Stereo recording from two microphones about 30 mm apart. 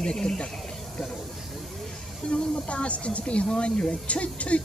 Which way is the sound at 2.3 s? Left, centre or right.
Left.